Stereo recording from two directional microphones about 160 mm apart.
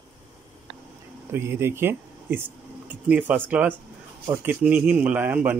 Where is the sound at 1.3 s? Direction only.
15° right (ahead or behind).